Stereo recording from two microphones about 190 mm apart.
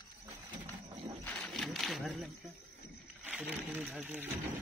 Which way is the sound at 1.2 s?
5° left (ahead or behind).